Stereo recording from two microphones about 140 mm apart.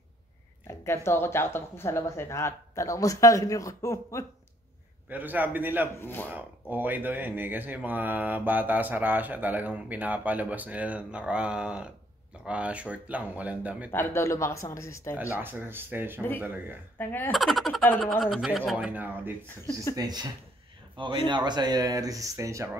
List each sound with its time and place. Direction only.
0.7 s speech: 20° left (ahead or behind)
5.1 s speech: 10° right (ahead or behind)
5.9 s speech: 15° left (ahead or behind)
6.3 s speech: 10° right (ahead or behind)
13.9 s speech: 20° left (ahead or behind)
15.3 s speech: 15° right (ahead or behind)
17.0 s speech: 15° left (ahead or behind)
17.3 s speech: centre (ahead or behind)
20.0 s speech: 30° right (ahead or behind)